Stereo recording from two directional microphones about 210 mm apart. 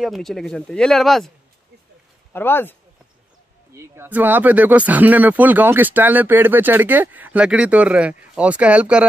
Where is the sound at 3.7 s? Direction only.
10° right (ahead or behind).